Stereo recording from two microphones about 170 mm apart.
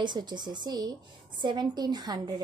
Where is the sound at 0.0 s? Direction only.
25° right (ahead or behind).